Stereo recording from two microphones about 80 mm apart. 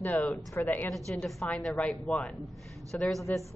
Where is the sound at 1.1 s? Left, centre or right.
Centre.